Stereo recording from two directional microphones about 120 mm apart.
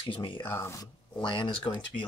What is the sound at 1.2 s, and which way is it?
Speech, 45° left (ahead or behind).